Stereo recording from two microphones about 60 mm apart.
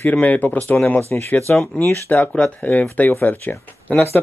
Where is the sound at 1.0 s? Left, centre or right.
Left.